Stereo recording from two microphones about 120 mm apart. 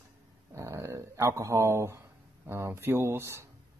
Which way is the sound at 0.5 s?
25° right (ahead or behind).